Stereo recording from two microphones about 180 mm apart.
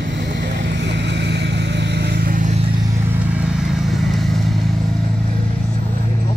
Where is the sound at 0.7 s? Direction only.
75° right (ahead or behind); by 2.5 s 50° right (ahead or behind).